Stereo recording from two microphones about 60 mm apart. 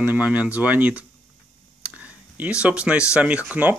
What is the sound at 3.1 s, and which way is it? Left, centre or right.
Speech, centre.